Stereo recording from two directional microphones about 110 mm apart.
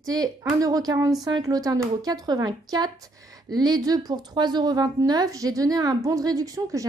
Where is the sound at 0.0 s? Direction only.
35° right (ahead or behind).